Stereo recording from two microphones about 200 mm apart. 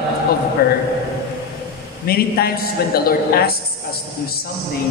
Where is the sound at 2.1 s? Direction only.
50° left (ahead or behind).